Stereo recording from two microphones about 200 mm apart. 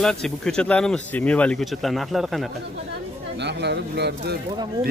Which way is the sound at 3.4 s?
55° right (ahead or behind).